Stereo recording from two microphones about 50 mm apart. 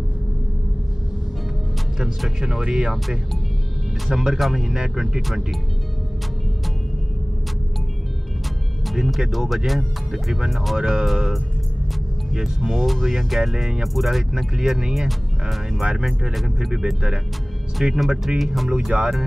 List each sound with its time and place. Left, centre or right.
2.0 s speech: centre
4.1 s speech: centre
8.8 s speech: centre
10.8 s speech: centre
14.3 s speech: centre
17.7 s speech: centre
18.9 s speech: centre